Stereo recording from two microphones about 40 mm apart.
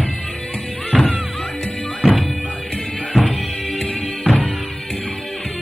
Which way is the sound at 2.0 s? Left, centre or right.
Centre.